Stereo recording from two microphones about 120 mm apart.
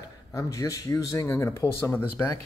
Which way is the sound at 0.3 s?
25° left (ahead or behind).